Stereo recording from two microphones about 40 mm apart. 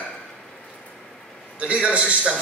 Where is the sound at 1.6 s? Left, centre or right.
Right.